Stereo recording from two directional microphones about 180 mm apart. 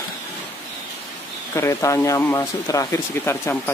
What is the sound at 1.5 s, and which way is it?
Speech, 15° left (ahead or behind).